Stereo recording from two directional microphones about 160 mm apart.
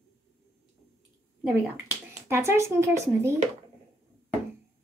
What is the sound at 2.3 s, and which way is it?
A woman's voice, 15° right (ahead or behind).